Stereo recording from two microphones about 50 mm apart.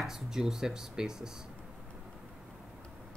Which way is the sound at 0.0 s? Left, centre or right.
Centre.